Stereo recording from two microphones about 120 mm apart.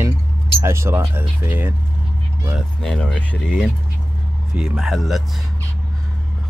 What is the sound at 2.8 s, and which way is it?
Speech, 10° left (ahead or behind).